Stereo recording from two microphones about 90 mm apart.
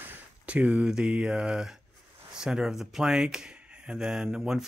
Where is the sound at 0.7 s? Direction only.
5° right (ahead or behind).